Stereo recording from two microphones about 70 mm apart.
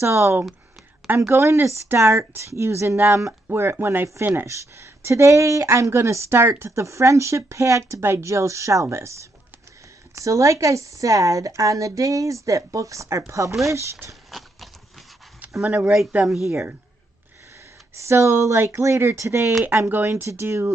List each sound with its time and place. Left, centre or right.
0.0 s speech: right
14.3 s horse: centre
15.7 s speech: centre
17.9 s speech: right